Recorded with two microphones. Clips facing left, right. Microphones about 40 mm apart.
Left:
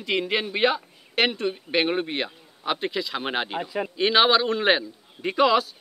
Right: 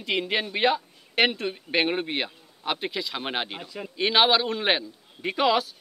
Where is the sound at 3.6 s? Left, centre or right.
Centre.